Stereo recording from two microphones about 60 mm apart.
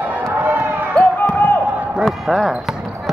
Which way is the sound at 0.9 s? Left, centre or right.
Left.